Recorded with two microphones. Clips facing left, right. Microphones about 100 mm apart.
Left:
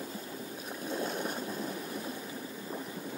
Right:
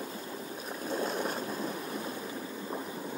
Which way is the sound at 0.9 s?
35° right (ahead or behind).